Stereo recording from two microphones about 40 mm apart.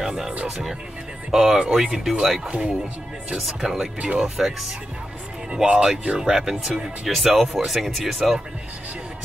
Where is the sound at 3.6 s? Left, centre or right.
Centre.